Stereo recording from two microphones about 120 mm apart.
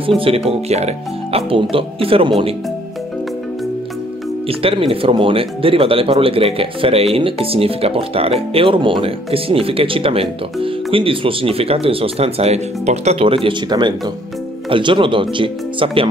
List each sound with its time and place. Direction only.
0.2 s speech: 55° right (ahead or behind)
4.5 s speech: 50° right (ahead or behind)